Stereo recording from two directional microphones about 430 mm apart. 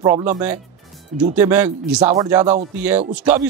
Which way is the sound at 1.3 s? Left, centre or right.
Centre.